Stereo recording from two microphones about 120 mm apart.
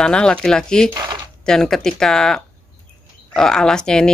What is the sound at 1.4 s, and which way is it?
Speech, 5° left (ahead or behind).